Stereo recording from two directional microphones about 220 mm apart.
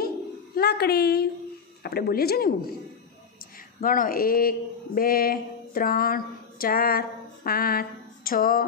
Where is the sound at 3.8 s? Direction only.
40° left (ahead or behind).